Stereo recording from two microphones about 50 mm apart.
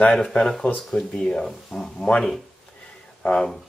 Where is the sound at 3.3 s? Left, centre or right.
Centre.